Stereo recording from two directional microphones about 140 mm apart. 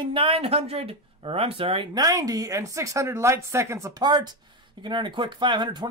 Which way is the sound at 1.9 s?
25° right (ahead or behind).